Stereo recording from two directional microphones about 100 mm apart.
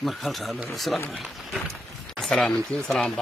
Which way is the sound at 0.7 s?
Centre (ahead or behind).